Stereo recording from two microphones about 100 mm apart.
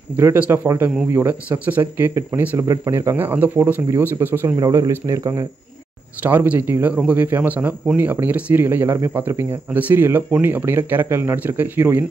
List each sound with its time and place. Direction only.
0.2 s speech: 20° right (ahead or behind)
2.6 s speech: 35° right (ahead or behind)
2.9 s speech: 25° right (ahead or behind)
4.6 s speech: 35° right (ahead or behind)
6.2 s speech: 15° right (ahead or behind)